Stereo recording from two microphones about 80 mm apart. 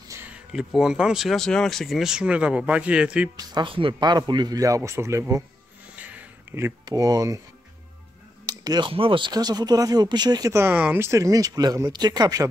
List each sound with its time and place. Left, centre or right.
0.2 s speech: centre
3.3 s speech: right
4.6 s speech: right
5.9 s a sound: centre
6.9 s speech: right
8.5 s a sound: right
8.8 s speech: right
9.4 s speech: right
10.5 s speech: right
11.1 s speech: right